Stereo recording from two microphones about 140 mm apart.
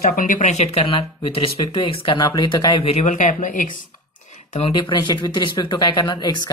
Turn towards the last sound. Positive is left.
turn(degrees=30)  # may be behind; listen again after turning